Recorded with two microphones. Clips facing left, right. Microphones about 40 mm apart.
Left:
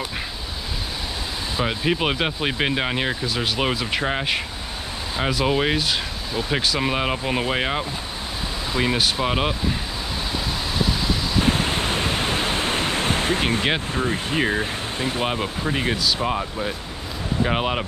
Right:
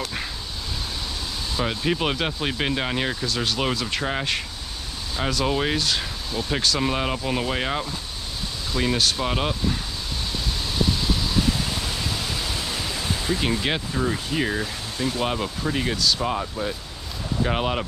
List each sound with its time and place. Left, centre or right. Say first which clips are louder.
1.6 s speech: left 2 dB; centre
11.4 s pink noise: left 4 dB; left
13.4 s speech: left 3 dB; left
15.2 s speech: left 1 dB; centre